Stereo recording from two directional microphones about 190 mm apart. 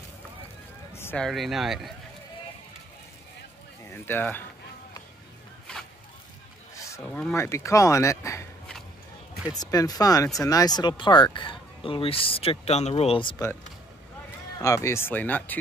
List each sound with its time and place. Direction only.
0.9 s speech: 10° left (ahead or behind)
3.8 s speech: 10° left (ahead or behind)
6.7 s a sound: 15° left (ahead or behind)
7.0 s speech: 5° left (ahead or behind)
9.5 s speech: 20° left (ahead or behind)
14.6 s speech: 15° left (ahead or behind)